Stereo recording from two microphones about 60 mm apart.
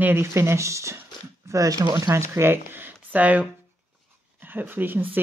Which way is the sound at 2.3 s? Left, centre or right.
Right.